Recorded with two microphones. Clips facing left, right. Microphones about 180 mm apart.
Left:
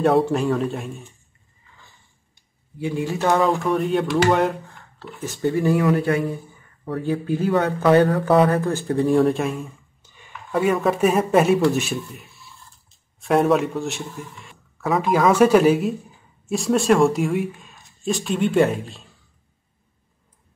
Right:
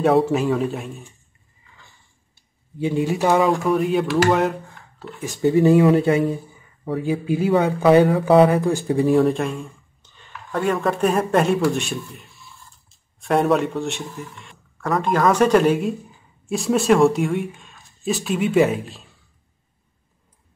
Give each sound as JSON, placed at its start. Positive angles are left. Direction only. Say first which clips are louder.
{"t": 0.0, "sound": "speech", "louder": "right 1 dB", "side_deg": 0}
{"t": 2.8, "sound": "speech", "louder": "right 3 dB", "side_deg": -20}
{"t": 3.3, "sound": "speech", "louder": "right 1 dB", "side_deg": -5}
{"t": 5.2, "sound": "speech", "louder": "right 5 dB", "side_deg": -15}
{"t": 6.8, "sound": "speech", "louder": "right 1 dB", "side_deg": -10}